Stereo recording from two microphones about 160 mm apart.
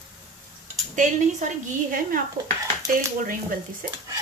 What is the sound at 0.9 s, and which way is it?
A woman's voice, 50° right (ahead or behind).